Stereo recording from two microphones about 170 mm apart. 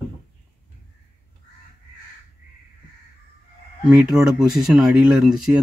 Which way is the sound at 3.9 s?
5° right (ahead or behind).